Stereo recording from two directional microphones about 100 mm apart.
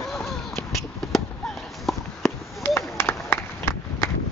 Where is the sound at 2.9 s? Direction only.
25° left (ahead or behind).